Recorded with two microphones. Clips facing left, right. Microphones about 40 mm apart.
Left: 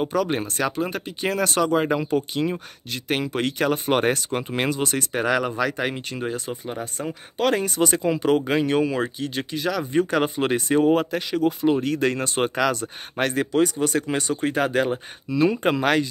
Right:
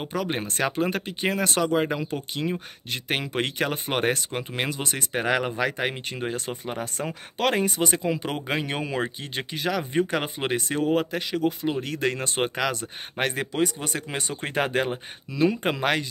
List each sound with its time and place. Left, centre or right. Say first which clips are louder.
0.0 s speech: left 5 dB; centre
0.6 s speech: even; right
1.2 s speech: left 3 dB; centre
2.9 s speech: left 3 dB; right
5.2 s speech: left 2 dB; right
6.3 s speech: left 1 dB; right
7.5 s speech: left 2 dB; right
8.0 s speech: left 7 dB; centre
8.7 s speech: left 6 dB; right
9.9 s speech: left 4 dB; centre
10.7 s speech: left 7 dB; centre
11.0 s speech: left 2 dB; centre
14.4 s speech: left 2 dB; right
15.3 s speech: left 3 dB; centre